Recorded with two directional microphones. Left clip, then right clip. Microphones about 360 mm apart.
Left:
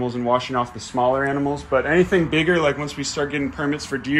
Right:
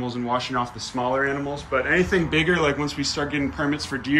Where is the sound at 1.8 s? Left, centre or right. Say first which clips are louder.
Left 2 dB; centre.